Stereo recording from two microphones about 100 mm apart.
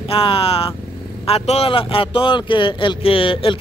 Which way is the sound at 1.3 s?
85° left.